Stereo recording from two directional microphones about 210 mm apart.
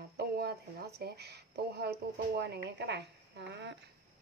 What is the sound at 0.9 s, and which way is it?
Speech, 50° right (ahead or behind).